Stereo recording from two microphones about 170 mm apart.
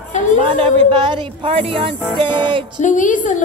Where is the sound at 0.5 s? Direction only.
35° right (ahead or behind).